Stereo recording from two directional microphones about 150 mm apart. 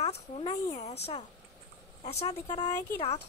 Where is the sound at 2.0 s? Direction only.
40° left (ahead or behind).